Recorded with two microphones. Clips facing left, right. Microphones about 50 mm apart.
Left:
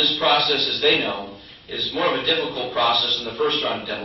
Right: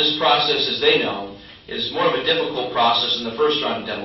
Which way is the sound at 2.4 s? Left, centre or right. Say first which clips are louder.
Right 3 dB; right.